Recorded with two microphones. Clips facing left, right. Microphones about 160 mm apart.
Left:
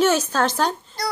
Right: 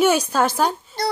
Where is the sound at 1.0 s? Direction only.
25° right (ahead or behind).